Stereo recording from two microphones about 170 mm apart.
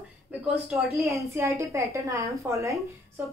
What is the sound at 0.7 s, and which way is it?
Speech, centre (ahead or behind).